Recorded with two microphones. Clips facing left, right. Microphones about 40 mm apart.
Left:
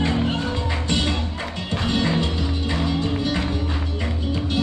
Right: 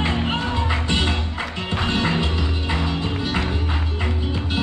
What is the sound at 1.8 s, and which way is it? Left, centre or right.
Music, right.